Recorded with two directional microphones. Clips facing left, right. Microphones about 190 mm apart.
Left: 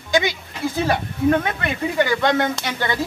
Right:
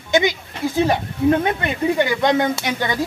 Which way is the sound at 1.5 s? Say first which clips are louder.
Right 4 dB; 20° right (ahead or behind).